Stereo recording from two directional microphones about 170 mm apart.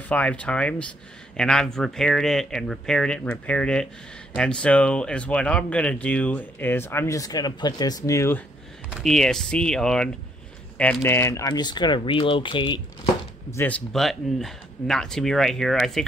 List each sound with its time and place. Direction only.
0.1 s speech: 10° left (ahead or behind)
8.9 s speech: centre (ahead or behind); by 13.6 s 25° left (ahead or behind)
13.6 s speech: 10° left (ahead or behind)